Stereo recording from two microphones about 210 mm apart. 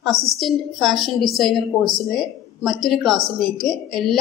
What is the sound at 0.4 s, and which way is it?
A woman's voice, centre (ahead or behind).